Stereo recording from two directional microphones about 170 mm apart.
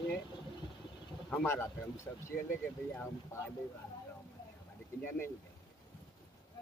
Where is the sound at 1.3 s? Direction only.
10° left (ahead or behind).